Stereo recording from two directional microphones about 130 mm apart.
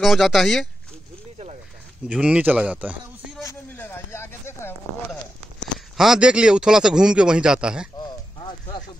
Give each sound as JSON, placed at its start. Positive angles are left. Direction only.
{"t": 0.0, "sound": "speech", "side_deg": 0}
{"t": 2.0, "sound": "a man's voice", "side_deg": -10}
{"t": 3.7, "sound": "a sound", "side_deg": 15}
{"t": 5.9, "sound": "a man's voice", "side_deg": -5}
{"t": 8.0, "sound": "clip-clop", "side_deg": 35}